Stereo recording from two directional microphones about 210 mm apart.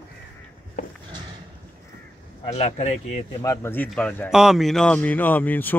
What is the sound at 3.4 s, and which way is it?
A man's voice, 15° left (ahead or behind).